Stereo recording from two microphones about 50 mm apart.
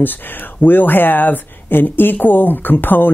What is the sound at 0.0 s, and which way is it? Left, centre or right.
Speech, left.